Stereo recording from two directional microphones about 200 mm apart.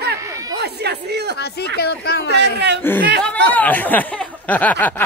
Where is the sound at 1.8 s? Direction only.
55° left (ahead or behind).